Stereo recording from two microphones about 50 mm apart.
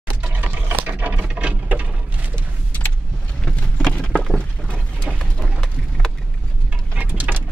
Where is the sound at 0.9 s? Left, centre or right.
Right.